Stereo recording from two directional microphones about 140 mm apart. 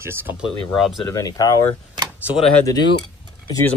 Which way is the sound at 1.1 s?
25° left (ahead or behind).